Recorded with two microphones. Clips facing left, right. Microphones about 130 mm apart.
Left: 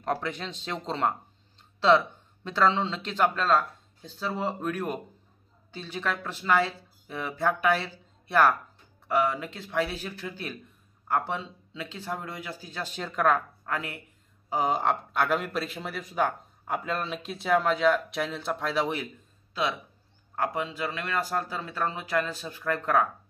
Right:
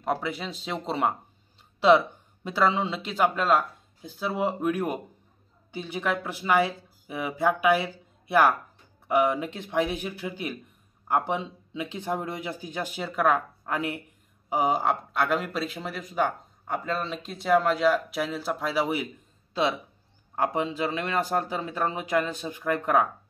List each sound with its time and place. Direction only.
0.0 s speech: 5° right (ahead or behind)
13.7 s speech: 20° right (ahead or behind)
14.5 s speech: 5° right (ahead or behind)
20.3 s speech: 20° right (ahead or behind)